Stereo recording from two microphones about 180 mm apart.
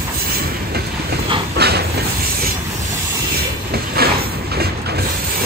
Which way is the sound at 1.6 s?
65° right (ahead or behind).